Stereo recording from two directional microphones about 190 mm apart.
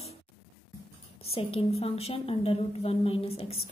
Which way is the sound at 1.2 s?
30° left (ahead or behind).